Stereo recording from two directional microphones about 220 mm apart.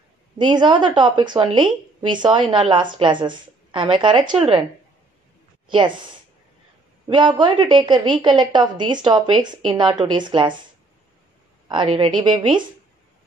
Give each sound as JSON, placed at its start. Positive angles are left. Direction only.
{"t": 0.4, "sound": "a woman's voice", "side_deg": -20}
{"t": 5.7, "sound": "a woman's voice", "side_deg": -20}
{"t": 7.1, "sound": "a woman's voice", "side_deg": -20}
{"t": 11.6, "sound": "a woman's voice", "side_deg": -20}